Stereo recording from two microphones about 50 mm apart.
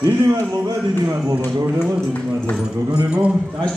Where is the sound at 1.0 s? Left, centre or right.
Right.